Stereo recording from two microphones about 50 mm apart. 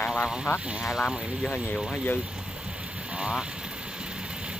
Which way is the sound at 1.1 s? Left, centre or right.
Right.